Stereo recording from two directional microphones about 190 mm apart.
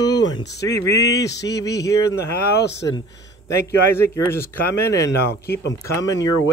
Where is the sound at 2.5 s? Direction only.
60° left (ahead or behind).